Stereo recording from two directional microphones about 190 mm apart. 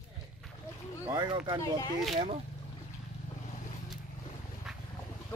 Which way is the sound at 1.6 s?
20° left (ahead or behind).